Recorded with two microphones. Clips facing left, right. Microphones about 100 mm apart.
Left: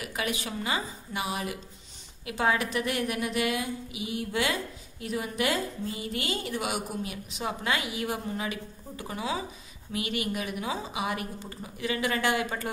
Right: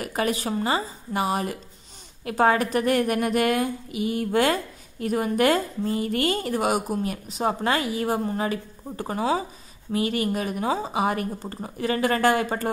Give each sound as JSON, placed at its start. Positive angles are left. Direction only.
{"t": 0.0, "sound": "a woman's voice", "side_deg": -40}